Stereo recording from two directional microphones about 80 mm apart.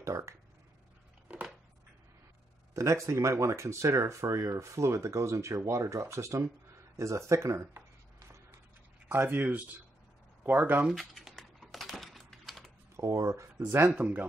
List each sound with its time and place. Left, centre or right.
0.0 s speech: right
2.7 s speech: right
7.0 s a sound: right
9.1 s speech: right
10.9 s typing: centre
12.9 s speech: right
13.8 s speech: centre